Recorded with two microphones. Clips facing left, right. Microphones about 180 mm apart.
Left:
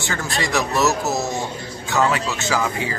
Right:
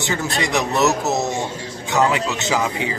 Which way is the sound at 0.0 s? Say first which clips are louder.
Right 2 dB; 20° right (ahead or behind).